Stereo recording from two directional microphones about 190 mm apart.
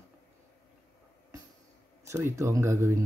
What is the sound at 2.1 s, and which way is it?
Speech, 15° right (ahead or behind).